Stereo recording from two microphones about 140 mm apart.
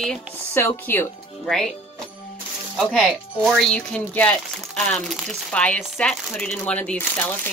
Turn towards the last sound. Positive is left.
turn(degrees=15)  # may be behind; listen again after turning